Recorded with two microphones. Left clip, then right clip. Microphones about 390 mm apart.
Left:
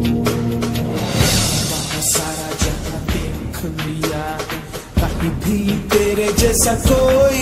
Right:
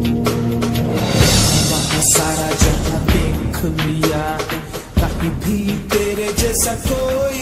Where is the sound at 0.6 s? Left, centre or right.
Right.